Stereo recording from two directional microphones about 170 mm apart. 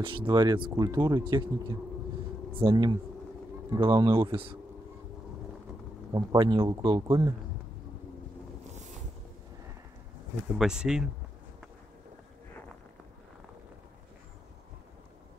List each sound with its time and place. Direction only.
0.0 s speech: 30° right (ahead or behind)
2.6 s speech: 20° right (ahead or behind)
6.1 s speech: 25° right (ahead or behind)
10.6 s speech: 5° right (ahead or behind)